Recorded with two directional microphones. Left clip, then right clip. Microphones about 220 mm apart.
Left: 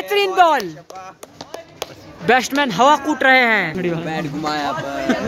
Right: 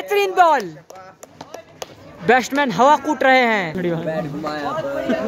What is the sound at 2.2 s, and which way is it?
A man's voice, 5° right (ahead or behind).